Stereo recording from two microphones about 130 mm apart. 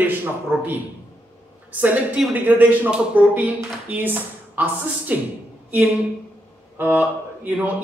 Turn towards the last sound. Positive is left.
turn(degrees=-15)  # may be behind; listen again after turning